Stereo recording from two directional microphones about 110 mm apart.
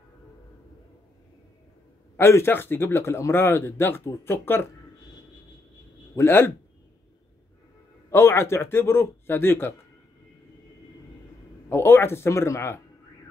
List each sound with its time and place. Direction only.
2.1 s speech: 20° left (ahead or behind)
6.1 s speech: 20° left (ahead or behind)
8.1 s speech: 25° left (ahead or behind)
11.7 s speech: 20° left (ahead or behind)